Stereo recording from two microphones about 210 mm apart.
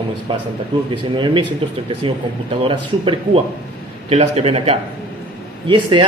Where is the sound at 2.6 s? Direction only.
25° right (ahead or behind).